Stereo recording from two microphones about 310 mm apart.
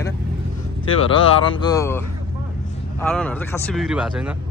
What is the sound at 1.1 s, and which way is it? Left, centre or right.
Speech, centre.